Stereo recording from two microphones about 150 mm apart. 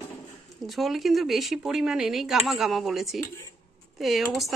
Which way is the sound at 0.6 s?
Centre (ahead or behind).